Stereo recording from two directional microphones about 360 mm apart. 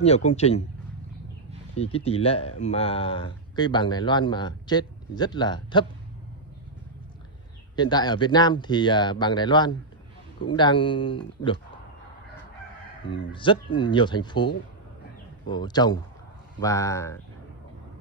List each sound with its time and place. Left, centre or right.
0.0 s speech: centre
1.8 s speech: centre
7.7 s speech: centre
13.3 s speech: centre